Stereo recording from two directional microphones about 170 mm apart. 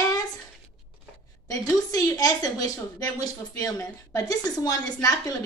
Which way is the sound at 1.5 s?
20° left (ahead or behind).